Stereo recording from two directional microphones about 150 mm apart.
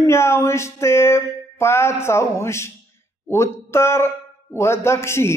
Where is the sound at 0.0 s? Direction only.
20° left (ahead or behind).